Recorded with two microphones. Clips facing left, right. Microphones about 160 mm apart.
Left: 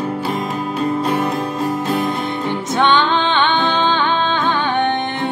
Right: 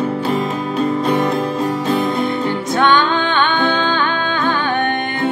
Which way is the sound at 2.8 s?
20° left (ahead or behind).